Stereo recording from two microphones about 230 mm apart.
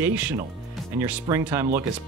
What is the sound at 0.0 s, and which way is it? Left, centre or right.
Speech, centre.